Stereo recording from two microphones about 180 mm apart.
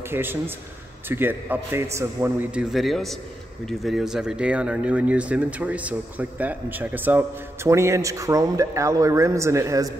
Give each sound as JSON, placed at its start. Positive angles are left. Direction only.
{"t": 0.1, "sound": "speech", "side_deg": -10}
{"t": 2.7, "sound": "speech", "side_deg": 0}